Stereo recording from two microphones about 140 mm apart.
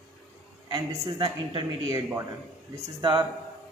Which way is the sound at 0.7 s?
30° right (ahead or behind).